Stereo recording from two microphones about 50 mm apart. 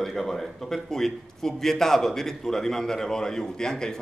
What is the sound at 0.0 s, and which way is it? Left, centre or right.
A man's voice, centre.